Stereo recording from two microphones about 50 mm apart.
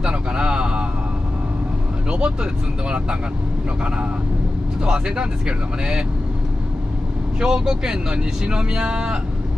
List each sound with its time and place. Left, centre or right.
0.0 s a sound: right
2.0 s vehicle: centre
4.8 s speech: centre
7.3 s speech: centre